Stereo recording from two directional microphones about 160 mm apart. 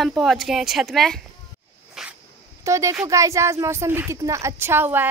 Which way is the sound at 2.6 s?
20° right (ahead or behind).